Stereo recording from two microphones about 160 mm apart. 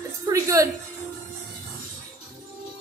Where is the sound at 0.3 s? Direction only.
20° right (ahead or behind).